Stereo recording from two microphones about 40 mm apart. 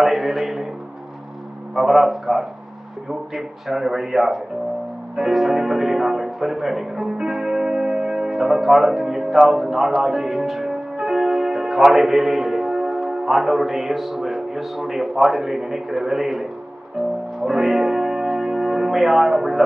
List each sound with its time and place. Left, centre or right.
0.0 s a sound: centre
1.8 s a man's voice: centre
17.0 s music: right
17.4 s music: centre